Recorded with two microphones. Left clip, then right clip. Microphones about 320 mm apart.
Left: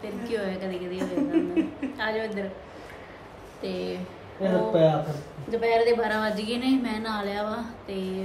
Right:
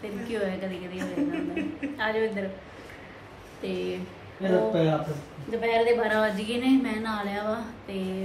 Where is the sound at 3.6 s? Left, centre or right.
Centre.